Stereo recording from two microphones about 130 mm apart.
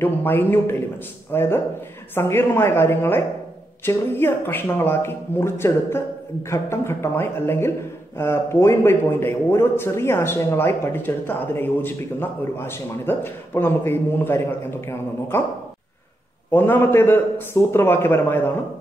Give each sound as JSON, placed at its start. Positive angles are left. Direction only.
{"t": 0.0, "sound": "speech", "side_deg": 15}
{"t": 16.5, "sound": "speech", "side_deg": 15}